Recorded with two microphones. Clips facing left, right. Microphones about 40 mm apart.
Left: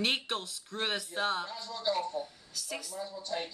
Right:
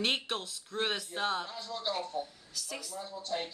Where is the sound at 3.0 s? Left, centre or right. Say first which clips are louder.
Right 1 dB; right.